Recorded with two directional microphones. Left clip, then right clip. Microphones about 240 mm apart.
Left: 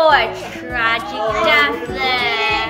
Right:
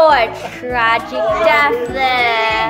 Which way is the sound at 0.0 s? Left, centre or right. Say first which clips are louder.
Right 2 dB; right.